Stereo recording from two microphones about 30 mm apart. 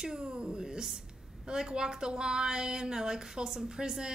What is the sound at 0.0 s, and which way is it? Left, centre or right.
A woman's voice, right.